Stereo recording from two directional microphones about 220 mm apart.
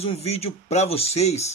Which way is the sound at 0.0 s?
30° left (ahead or behind).